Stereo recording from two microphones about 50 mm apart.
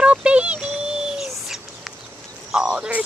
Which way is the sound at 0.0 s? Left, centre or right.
Right.